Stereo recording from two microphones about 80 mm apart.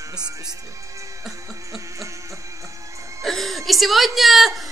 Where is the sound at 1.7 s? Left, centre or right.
Right.